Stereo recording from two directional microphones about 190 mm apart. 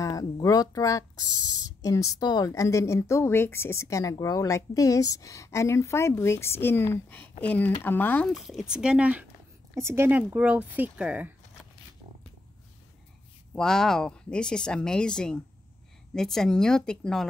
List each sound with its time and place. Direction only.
0.0 s a woman's voice: 20° left (ahead or behind); by 11.3 s 10° right (ahead or behind)
13.6 s a woman's voice: 5° left (ahead or behind)